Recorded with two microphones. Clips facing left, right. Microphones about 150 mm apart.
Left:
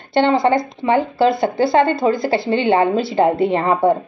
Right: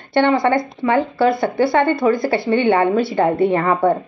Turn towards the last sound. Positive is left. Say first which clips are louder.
# even
turn(degrees=25)  # may be behind; listen again after turning